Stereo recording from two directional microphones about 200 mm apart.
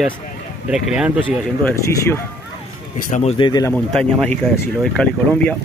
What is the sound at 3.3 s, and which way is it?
Speech, 20° left (ahead or behind).